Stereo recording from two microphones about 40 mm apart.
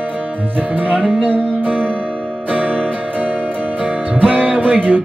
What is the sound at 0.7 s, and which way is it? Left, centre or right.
Music, right.